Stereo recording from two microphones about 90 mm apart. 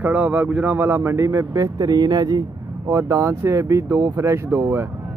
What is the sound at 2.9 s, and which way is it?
Speech, 35° right (ahead or behind).